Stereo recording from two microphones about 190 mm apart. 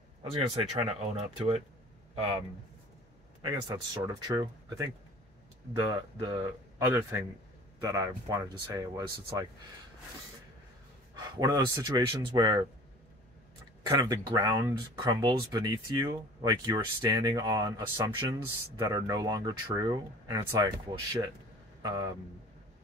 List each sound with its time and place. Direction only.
0.2 s speech: 30° right (ahead or behind)
3.4 s speech: 20° right (ahead or behind)
5.8 s a man's voice: 25° right (ahead or behind)
11.1 s speech: 20° right (ahead or behind)
13.8 s speech: 20° right (ahead or behind)
21.8 s speech: 20° right (ahead or behind)